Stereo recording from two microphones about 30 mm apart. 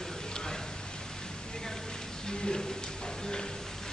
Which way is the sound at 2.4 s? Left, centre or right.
Left.